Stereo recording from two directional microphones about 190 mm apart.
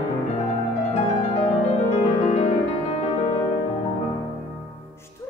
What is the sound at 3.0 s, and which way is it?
Music, 35° left (ahead or behind).